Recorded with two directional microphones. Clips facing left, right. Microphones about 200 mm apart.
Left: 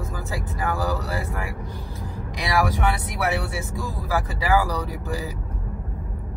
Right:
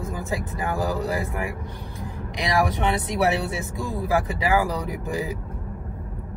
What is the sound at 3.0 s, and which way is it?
Speech, 25° right (ahead or behind).